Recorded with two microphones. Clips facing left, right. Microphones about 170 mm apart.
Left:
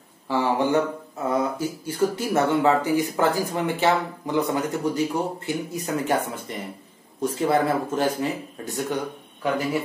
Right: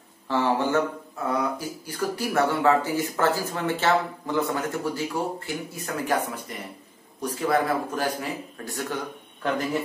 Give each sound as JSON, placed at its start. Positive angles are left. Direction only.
{"t": 0.3, "sound": "speech", "side_deg": 15}